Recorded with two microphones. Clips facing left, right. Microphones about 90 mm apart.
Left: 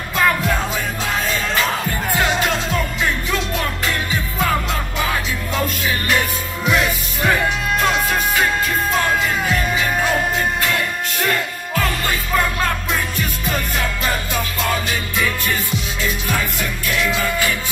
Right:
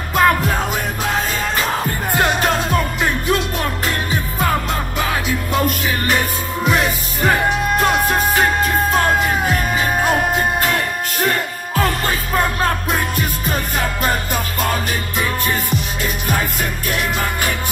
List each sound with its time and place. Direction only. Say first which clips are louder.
0.1 s music: right 3 dB; 40° right (ahead or behind)
2.1 s music: right 3 dB; 45° right (ahead or behind)
6.1 s music: right 1 dB; 40° right (ahead or behind)
16.3 s music: right 1 dB; 45° right (ahead or behind)